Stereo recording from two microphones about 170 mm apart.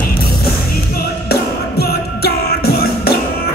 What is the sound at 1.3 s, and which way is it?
Music, 65° left (ahead or behind).